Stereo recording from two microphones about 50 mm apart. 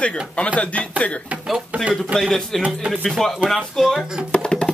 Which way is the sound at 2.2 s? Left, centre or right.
Centre.